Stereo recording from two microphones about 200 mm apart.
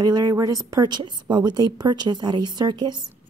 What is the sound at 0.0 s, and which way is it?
A woman's voice, 20° right (ahead or behind).